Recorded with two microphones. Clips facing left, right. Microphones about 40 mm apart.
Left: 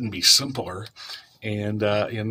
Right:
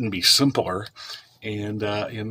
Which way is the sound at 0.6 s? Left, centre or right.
Right.